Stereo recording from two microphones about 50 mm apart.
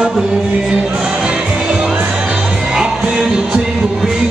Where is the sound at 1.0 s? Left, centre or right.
Centre.